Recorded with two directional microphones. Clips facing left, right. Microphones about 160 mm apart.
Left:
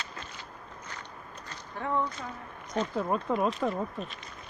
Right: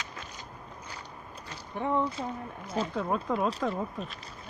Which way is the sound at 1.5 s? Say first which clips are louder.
Right 2 dB; 15° right (ahead or behind).